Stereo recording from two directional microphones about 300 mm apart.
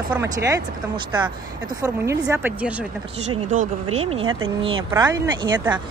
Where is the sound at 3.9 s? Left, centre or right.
Centre.